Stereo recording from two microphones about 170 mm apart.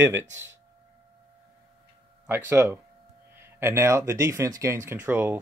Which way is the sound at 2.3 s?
15° right (ahead or behind).